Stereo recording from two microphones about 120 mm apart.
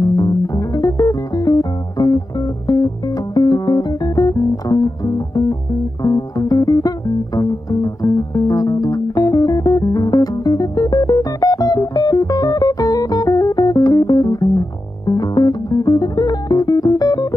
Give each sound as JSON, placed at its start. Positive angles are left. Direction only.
{"t": 0.1, "sound": "music", "side_deg": 30}
{"t": 3.3, "sound": "music", "side_deg": 35}